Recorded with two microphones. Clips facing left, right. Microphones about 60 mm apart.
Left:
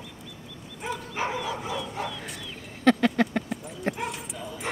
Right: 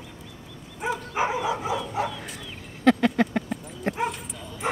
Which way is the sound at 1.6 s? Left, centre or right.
Centre.